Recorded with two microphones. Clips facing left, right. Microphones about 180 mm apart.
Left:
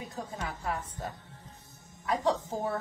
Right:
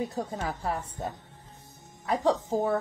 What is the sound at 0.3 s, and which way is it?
Speech, 30° right (ahead or behind).